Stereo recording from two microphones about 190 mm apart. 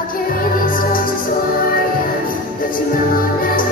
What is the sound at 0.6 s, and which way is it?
Music, 50° left (ahead or behind).